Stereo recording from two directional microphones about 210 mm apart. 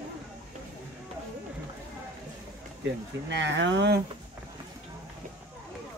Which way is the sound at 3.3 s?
55° right (ahead or behind).